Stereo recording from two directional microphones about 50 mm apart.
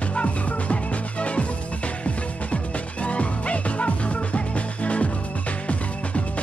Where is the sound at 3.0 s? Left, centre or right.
Left.